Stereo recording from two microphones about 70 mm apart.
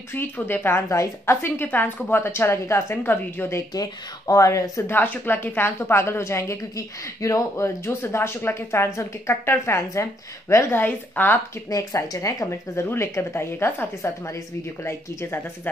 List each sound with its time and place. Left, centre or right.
0.1 s speech: left
0.8 s speech: left
1.3 s speech: left
3.7 s speech: left
4.8 s speech: left
11.7 s speech: left